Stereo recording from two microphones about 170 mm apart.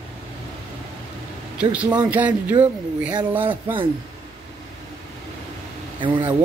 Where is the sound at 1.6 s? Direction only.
10° right (ahead or behind).